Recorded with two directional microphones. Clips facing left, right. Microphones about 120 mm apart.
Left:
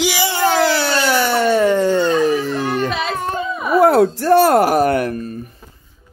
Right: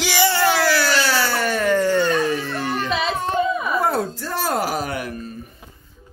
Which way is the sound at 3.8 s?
70° left (ahead or behind).